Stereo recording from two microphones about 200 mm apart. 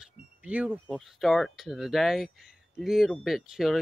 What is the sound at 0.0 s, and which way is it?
Speech, 5° right (ahead or behind).